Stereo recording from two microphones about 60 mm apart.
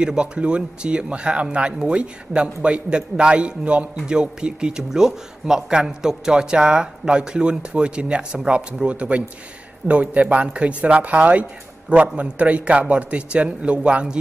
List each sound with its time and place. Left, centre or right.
0.0 s speech: centre